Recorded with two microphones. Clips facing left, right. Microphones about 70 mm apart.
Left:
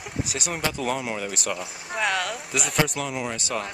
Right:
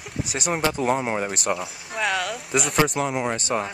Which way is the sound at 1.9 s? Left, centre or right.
Centre.